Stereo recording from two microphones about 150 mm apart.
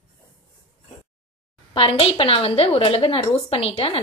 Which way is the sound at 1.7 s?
35° left (ahead or behind).